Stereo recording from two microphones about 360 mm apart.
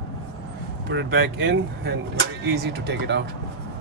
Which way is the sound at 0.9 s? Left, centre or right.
Right.